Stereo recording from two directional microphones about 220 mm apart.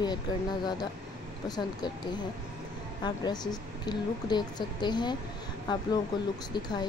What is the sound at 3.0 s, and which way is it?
A woman's voice, 20° left (ahead or behind).